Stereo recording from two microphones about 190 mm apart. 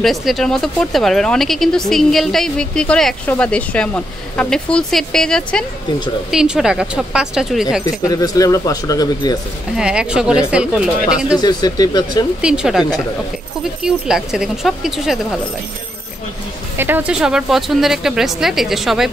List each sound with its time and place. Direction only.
0.0 s speech: centre (ahead or behind)
7.8 s speech: 20° left (ahead or behind)
9.8 s speech: 5° right (ahead or behind)
11.4 s speech: 20° left (ahead or behind)
12.4 s speech: 5° right (ahead or behind)
16.7 s speech: 10° right (ahead or behind)